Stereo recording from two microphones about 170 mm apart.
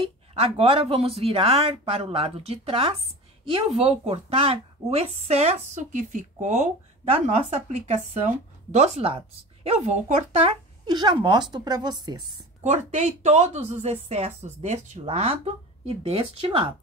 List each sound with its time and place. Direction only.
0.0 s a woman's voice: 35° right (ahead or behind)
10.9 s speech: 25° right (ahead or behind)
12.6 s a woman's voice: 40° right (ahead or behind)